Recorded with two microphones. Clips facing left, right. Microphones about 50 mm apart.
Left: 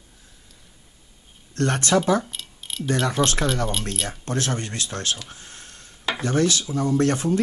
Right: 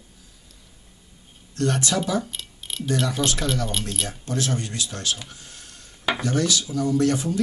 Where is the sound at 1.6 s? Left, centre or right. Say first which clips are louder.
Left 3 dB; left.